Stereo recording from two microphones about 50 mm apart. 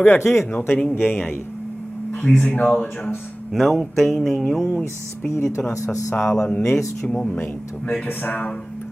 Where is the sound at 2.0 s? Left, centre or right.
Left.